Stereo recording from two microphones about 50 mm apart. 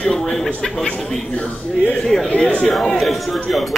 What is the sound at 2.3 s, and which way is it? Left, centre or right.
Speech, left.